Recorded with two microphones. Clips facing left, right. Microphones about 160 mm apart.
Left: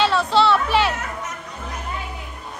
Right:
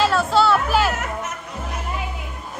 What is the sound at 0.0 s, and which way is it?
Music, centre (ahead or behind).